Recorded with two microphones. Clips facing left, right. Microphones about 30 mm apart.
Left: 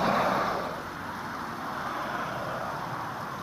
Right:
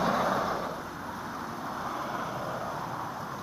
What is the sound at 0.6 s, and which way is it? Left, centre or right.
Vehicle, centre.